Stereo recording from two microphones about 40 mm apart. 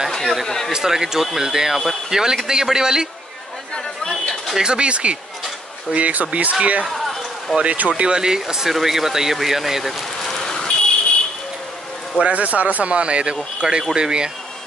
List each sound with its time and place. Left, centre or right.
0.1 s a sound: centre
0.7 s speech: centre
3.7 s chatter: centre
4.6 s speech: right
8.0 s speech: centre
10.2 s a sound: centre
12.2 s speech: right